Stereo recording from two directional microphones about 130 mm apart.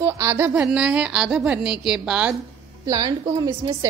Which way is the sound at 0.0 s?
20° right (ahead or behind).